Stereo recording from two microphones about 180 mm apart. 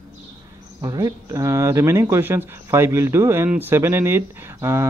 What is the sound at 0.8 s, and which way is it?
Speech, 20° right (ahead or behind).